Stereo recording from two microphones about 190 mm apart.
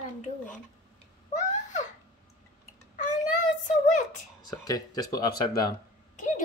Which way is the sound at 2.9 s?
40° left (ahead or behind).